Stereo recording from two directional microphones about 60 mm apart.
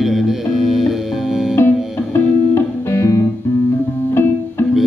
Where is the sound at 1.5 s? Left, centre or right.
Left.